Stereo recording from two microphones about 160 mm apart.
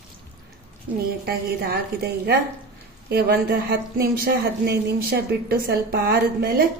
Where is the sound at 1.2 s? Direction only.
75° right (ahead or behind).